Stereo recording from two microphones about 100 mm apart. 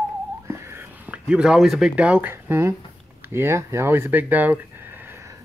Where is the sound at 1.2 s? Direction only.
10° right (ahead or behind).